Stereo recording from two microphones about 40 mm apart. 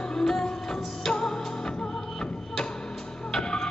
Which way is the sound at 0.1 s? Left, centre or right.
Centre.